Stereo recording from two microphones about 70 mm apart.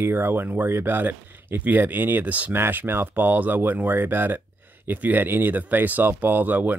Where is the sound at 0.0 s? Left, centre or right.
Right.